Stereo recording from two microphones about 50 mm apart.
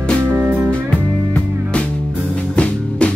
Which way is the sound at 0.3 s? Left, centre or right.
Right.